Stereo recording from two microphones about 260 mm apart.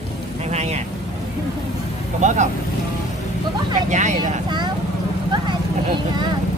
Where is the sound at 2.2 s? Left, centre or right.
Right.